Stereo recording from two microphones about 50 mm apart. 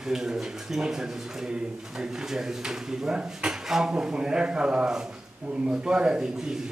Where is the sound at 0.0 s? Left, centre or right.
Centre.